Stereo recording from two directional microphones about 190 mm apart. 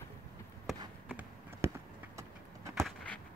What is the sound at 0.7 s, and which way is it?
Basketball bounce, centre (ahead or behind).